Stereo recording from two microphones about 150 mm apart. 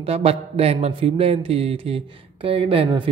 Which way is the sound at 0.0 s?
40° right (ahead or behind).